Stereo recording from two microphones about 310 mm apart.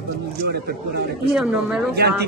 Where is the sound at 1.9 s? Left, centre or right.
Right.